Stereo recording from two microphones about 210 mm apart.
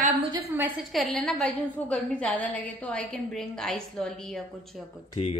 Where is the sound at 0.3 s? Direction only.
10° right (ahead or behind).